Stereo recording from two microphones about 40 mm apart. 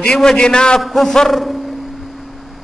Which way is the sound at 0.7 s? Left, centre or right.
Centre.